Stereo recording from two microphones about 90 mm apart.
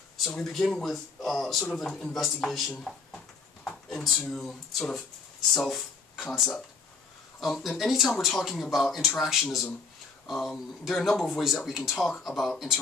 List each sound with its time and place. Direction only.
0.2 s speech: 5° left (ahead or behind)
5.5 s a sound: centre (ahead or behind)
7.3 s speech: centre (ahead or behind)